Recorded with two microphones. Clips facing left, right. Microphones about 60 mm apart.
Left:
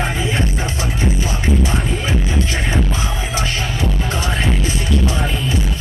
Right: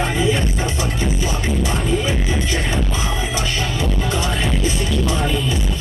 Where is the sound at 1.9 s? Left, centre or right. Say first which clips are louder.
Right 1 dB; left.